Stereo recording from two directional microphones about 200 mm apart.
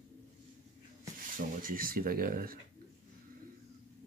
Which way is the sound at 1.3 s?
45° right (ahead or behind).